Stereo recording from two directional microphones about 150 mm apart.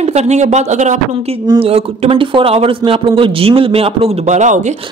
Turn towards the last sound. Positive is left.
turn(degrees=-55)  # may be behind; listen again after turning